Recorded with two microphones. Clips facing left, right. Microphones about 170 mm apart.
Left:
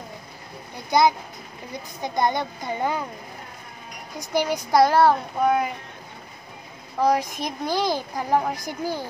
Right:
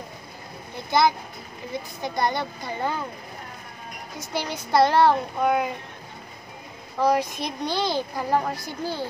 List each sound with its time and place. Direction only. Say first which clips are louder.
2.0 s speech: left 3 dB; 20° left (ahead or behind)
4.2 s speech: left 6 dB; 15° left (ahead or behind)
7.0 s speech: left 1 dB; 15° left (ahead or behind)